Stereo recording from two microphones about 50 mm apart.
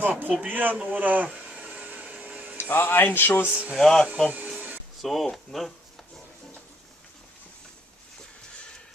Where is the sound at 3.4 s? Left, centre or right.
Right.